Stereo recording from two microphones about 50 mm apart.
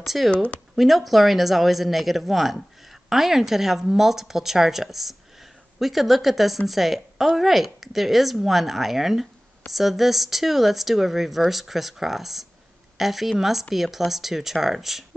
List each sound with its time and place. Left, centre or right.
0.0 s speech: centre
0.3 s speech: left
0.7 s speech: centre